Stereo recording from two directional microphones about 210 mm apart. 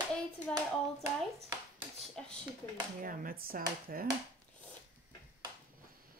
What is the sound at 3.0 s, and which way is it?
Speech, 40° right (ahead or behind).